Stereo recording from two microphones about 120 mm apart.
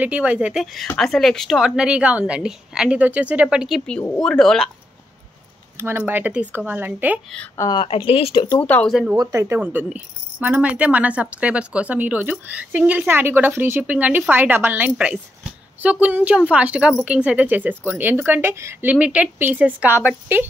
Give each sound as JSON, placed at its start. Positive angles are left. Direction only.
{"t": 0.0, "sound": "a woman's voice", "side_deg": -10}
{"t": 5.8, "sound": "speech", "side_deg": -20}
{"t": 7.7, "sound": "speech", "side_deg": 45}
{"t": 8.5, "sound": "speech", "side_deg": 15}
{"t": 8.8, "sound": "a woman's voice", "side_deg": 0}
{"t": 9.1, "sound": "speech", "side_deg": -30}